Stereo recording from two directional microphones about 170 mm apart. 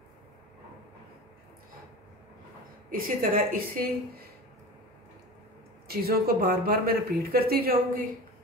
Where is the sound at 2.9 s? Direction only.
55° right (ahead or behind).